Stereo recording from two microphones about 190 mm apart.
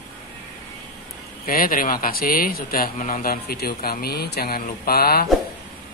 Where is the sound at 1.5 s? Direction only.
50° left (ahead or behind).